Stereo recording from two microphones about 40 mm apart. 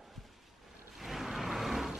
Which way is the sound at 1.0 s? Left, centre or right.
Centre.